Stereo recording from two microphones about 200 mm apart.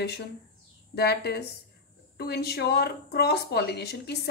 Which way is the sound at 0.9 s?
55° left (ahead or behind).